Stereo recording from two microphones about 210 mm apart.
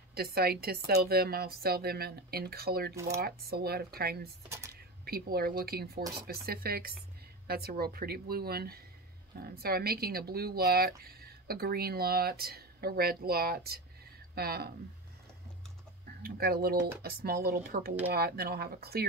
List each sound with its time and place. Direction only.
0.1 s speech: 45° right (ahead or behind)
2.9 s speech: 15° right (ahead or behind)
3.2 s speech: 45° right (ahead or behind)
4.5 s speech: 15° right (ahead or behind)
5.0 s speech: 45° right (ahead or behind)
16.2 s speech: 45° right (ahead or behind)